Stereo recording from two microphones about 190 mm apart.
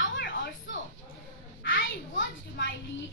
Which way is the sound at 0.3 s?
80° left.